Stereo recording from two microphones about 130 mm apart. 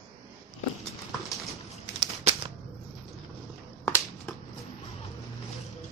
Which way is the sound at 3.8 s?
20° left (ahead or behind).